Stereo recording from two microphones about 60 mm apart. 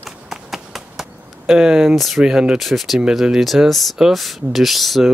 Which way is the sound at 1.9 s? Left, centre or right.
Centre.